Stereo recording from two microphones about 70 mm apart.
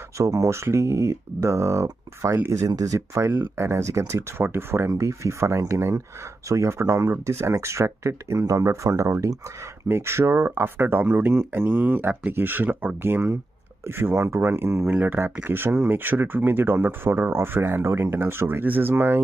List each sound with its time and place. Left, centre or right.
0.2 s speech: right
3.3 s speech: right
9.8 s speech: right
14.9 s speech: right